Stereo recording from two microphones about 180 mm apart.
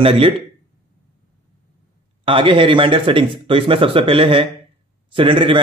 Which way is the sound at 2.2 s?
30° right (ahead or behind).